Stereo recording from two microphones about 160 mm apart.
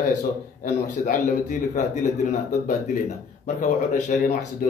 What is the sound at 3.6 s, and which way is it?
Speech, 50° left (ahead or behind).